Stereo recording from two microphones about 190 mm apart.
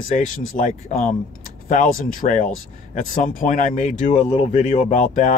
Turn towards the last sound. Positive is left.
turn(degrees=40)  # may be behind; listen again after turning